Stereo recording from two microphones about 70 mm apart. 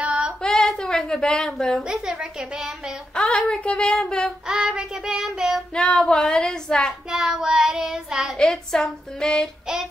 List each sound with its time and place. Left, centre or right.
0.0 s female singing: centre
0.4 s a sound: centre
1.8 s a woman's voice: centre
3.2 s speech: centre
4.5 s a woman's voice: centre
5.8 s speech: centre
7.1 s child singing: centre
8.4 s speech: centre